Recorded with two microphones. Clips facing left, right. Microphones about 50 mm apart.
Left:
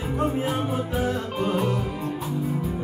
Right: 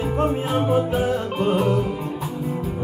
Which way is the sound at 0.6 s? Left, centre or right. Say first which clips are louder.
Right 6 dB; right.